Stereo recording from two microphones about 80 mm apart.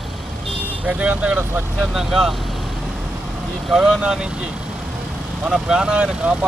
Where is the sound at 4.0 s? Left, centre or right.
Centre.